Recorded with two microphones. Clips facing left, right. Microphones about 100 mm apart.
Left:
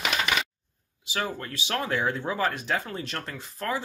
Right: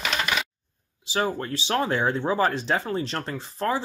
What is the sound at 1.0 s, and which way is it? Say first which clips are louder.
Speech: right 5 dB; 30° right (ahead or behind).